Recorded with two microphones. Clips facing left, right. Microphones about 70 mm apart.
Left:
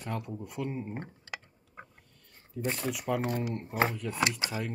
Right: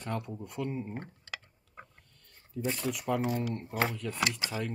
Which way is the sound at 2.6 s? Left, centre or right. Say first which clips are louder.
Even; centre.